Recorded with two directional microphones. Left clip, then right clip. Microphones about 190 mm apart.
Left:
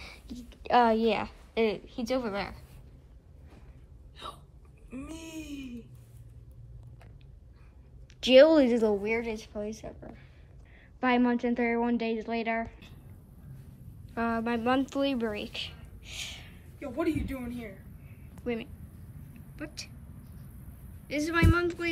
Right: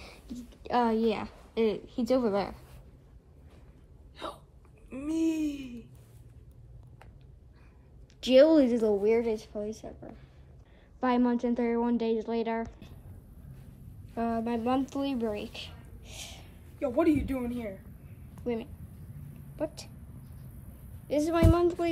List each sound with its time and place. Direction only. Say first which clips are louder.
0.0 s a woman's voice: even; 15° right (ahead or behind)
4.8 s speech: right 12 dB; 35° right (ahead or behind)
5.6 s a sound: even; 35° right (ahead or behind)
8.2 s a woman's voice: left 2 dB; 5° right (ahead or behind)
9.0 s a woman's voice: right 5 dB; 25° right (ahead or behind)
14.1 s speech: left 1 dB; 5° right (ahead or behind)
16.7 s speech: right 5 dB; 35° right (ahead or behind)
18.4 s a woman's voice: right 1 dB; 10° right (ahead or behind)
21.1 s a woman's voice: right 2 dB; 15° right (ahead or behind)